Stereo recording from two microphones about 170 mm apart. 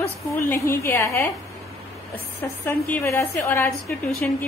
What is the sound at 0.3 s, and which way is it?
A woman's voice, 15° left (ahead or behind).